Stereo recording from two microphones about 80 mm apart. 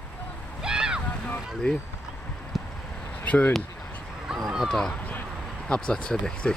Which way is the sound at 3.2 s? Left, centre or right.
Centre.